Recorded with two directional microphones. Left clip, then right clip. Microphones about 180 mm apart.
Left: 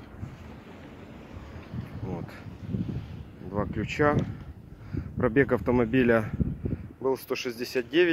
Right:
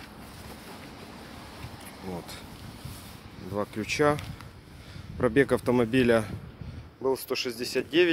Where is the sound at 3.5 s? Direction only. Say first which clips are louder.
Right 1 dB; 5° right (ahead or behind).